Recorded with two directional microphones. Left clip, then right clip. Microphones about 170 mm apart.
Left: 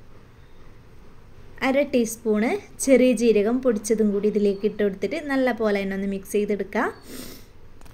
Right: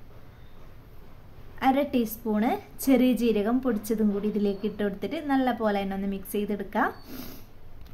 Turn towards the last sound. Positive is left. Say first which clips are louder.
# left 3 dB
turn(degrees=10)  # may be behind; listen again after turning